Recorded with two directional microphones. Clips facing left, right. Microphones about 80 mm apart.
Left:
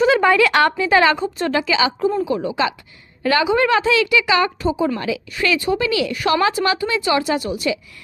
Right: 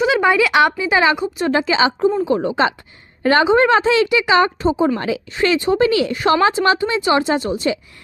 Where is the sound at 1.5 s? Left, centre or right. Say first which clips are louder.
Right 3 dB; right.